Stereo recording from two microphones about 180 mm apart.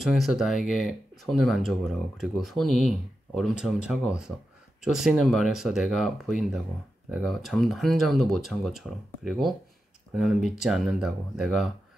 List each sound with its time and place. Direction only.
0.0 s speech: centre (ahead or behind)